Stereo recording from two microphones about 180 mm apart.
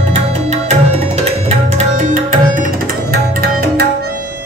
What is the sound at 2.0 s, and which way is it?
Music, 45° right (ahead or behind).